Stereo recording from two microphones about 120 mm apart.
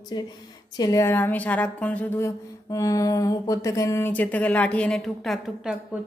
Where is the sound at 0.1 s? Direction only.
40° left (ahead or behind).